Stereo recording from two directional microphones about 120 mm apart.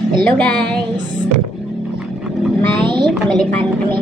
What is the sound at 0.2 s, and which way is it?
Speech, 10° left (ahead or behind).